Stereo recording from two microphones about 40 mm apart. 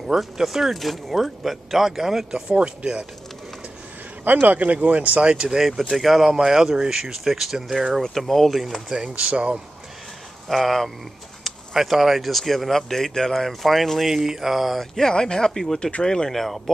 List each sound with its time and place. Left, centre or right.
0.0 s speech: centre
2.5 s speech: right
4.2 s speech: right
4.6 s speech: right
5.3 s speech: right
5.6 s speech: centre
7.2 s speech: centre
9.0 s speech: right
10.5 s speech: centre
14.1 s speech: centre
14.8 s speech: centre
16.3 s speech: centre